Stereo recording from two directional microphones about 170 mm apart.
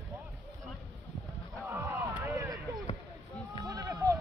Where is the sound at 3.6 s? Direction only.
20° right (ahead or behind).